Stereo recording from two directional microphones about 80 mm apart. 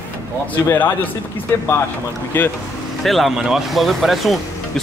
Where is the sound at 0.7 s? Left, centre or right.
Left.